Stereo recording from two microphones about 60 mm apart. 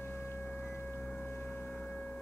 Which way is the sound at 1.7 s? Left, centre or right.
Centre.